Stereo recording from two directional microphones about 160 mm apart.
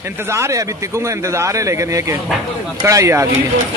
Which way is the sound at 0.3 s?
20° right (ahead or behind).